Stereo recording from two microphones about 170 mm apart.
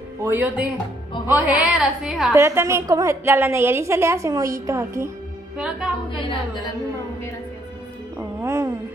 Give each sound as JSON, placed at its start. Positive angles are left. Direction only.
{"t": 0.2, "sound": "a woman's voice", "side_deg": -10}
{"t": 2.3, "sound": "a woman's voice", "side_deg": -15}
{"t": 8.4, "sound": "music", "side_deg": -15}